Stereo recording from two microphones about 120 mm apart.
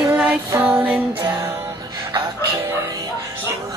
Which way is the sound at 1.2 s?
25° right (ahead or behind).